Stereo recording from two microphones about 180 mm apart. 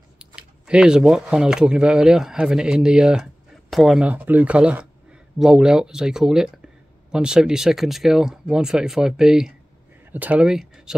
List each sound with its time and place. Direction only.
0.2 s speech: 5° right (ahead or behind)